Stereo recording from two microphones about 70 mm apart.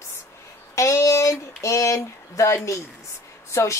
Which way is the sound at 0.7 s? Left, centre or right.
Left.